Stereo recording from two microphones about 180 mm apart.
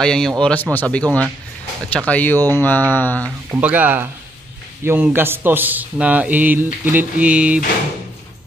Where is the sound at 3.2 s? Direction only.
10° right (ahead or behind).